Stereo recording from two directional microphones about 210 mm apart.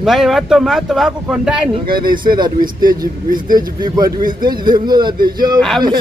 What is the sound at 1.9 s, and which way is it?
Speech, 45° right (ahead or behind).